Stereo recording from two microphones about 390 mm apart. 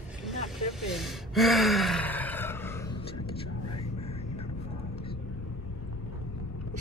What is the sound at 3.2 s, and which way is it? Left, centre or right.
Whispering, left.